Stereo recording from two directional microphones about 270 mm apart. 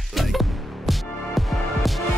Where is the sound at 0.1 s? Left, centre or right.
Centre.